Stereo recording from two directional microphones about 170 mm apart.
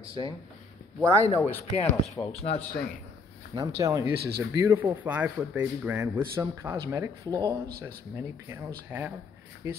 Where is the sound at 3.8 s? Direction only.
20° right (ahead or behind).